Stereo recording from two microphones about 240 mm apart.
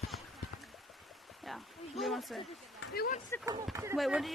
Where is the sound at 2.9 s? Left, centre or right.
Left.